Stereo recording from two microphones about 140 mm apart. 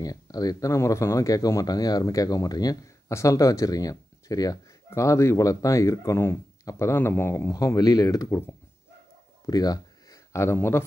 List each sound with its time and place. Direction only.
0.0 s speech: 25° left (ahead or behind)
9.5 s speech: 25° left (ahead or behind)